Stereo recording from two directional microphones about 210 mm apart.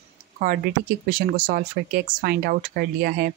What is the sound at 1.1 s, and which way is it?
Speech, 40° right (ahead or behind).